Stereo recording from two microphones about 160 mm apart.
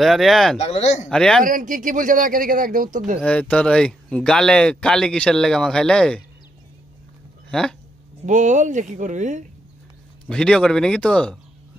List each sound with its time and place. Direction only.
0.0 s speech: centre (ahead or behind)
0.6 s speech: 40° left (ahead or behind)
1.1 s speech: 5° left (ahead or behind)
1.4 s speech: 55° right (ahead or behind)
3.3 s speech: 5° left (ahead or behind)
7.4 s speech: 5° left (ahead or behind)
8.3 s speech: 50° right (ahead or behind)
10.2 s speech: 5° left (ahead or behind)